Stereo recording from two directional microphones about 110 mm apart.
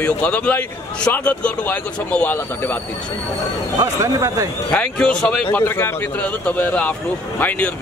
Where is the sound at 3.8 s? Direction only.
30° right (ahead or behind).